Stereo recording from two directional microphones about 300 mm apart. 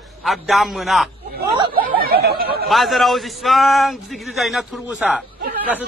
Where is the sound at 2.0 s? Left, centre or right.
Right.